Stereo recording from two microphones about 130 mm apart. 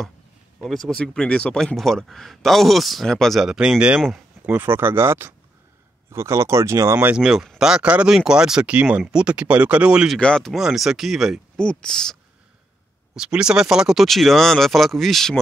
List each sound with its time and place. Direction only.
0.6 s speech: centre (ahead or behind); by 7.1 s 25° right (ahead or behind)
7.1 s speech: 5° right (ahead or behind)
10.1 s speech: 5° left (ahead or behind)
13.1 s speech: 5° right (ahead or behind)